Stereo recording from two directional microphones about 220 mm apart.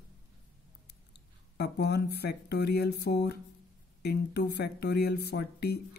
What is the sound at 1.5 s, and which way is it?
Speech, 50° left (ahead or behind).